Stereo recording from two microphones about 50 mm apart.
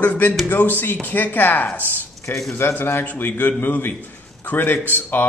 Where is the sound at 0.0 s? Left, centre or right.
Left.